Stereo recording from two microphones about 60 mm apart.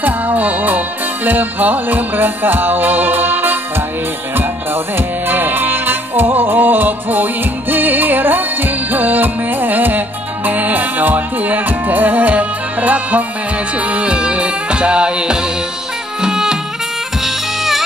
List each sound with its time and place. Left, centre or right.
0.0 s music: right
4.9 s music: right; by 17.8 s centre